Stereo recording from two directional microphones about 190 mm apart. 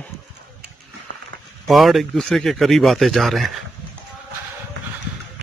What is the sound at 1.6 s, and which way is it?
A man's voice, centre (ahead or behind).